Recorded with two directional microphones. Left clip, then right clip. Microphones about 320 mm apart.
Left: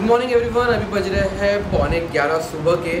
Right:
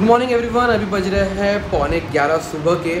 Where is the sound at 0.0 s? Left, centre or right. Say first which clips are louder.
Right 2 dB; centre.